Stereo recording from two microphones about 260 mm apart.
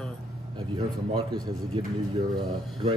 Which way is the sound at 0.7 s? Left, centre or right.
Centre.